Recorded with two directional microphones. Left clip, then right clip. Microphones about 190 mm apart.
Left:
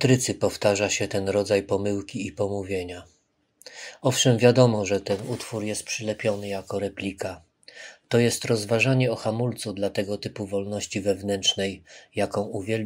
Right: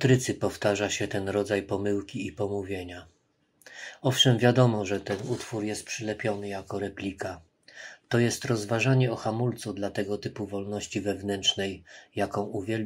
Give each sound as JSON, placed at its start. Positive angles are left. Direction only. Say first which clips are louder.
{"t": 0.0, "sound": "speech", "louder": "left 3 dB", "side_deg": 35}